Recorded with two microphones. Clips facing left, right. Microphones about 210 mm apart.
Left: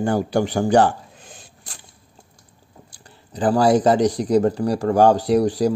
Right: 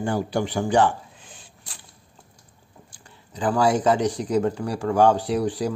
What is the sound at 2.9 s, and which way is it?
Speech, 35° left (ahead or behind).